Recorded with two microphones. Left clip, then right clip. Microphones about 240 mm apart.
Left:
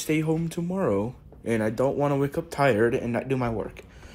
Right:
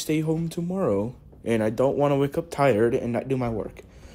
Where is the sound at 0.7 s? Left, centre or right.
Centre.